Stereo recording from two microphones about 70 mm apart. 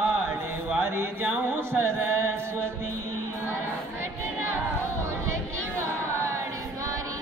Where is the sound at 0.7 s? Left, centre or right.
Right.